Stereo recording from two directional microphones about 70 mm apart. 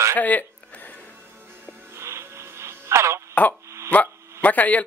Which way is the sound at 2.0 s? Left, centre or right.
Right.